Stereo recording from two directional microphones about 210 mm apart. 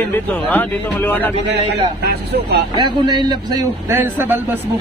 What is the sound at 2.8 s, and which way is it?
A man's voice, 20° right (ahead or behind).